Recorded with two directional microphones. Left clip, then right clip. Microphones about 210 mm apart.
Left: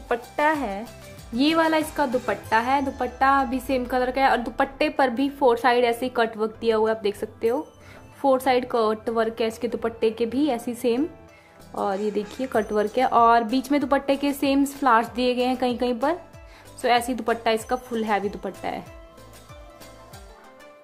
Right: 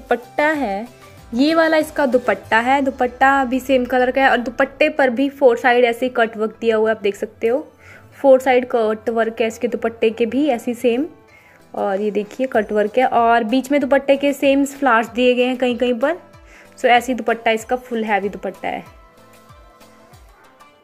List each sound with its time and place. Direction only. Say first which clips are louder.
0.4 s a woman's voice: right 3 dB; 15° right (ahead or behind)